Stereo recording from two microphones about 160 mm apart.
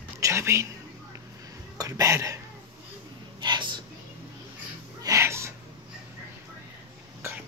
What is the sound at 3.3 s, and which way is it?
Whispering, 30° right (ahead or behind).